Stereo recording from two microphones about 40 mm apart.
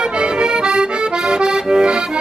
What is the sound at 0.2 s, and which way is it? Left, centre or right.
Accordion, right.